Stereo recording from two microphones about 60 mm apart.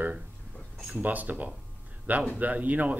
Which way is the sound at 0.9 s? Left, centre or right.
Right.